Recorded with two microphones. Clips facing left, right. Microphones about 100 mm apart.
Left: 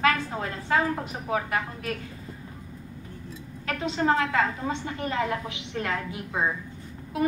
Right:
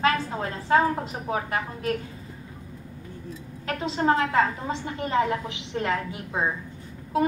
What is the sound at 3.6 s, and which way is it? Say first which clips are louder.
Speech: right 1 dB; 30° right (ahead or behind).